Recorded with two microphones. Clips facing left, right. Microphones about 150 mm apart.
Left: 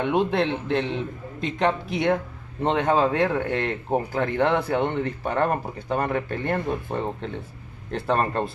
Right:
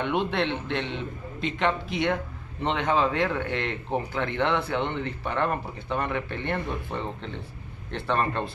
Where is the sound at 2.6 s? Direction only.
45° left (ahead or behind).